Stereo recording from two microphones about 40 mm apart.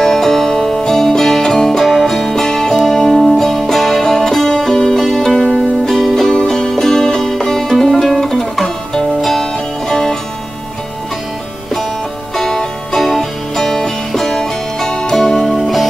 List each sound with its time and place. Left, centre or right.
0.0 s music: centre
6.3 s music: centre
12.4 s music: centre